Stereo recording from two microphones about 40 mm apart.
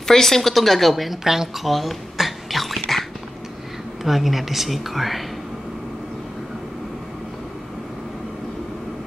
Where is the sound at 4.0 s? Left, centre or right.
Centre.